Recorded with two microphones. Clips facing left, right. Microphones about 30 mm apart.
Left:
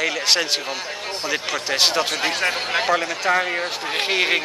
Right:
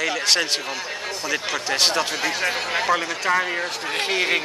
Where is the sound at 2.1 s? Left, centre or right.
Left.